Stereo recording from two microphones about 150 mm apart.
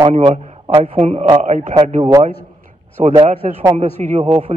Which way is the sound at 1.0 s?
45° right (ahead or behind).